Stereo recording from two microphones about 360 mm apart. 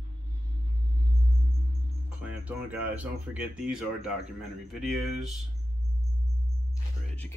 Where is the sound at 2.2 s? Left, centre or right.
Centre.